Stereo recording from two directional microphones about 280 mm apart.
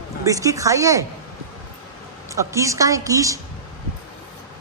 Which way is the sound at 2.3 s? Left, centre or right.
Centre.